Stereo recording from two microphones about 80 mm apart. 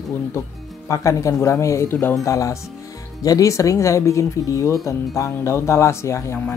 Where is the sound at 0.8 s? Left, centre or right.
Left.